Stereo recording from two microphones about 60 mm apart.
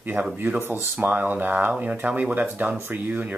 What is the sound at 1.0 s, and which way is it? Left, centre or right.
Speech, right.